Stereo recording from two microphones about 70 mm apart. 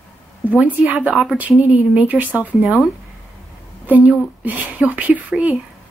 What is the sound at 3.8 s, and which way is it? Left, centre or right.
A woman's voice, right.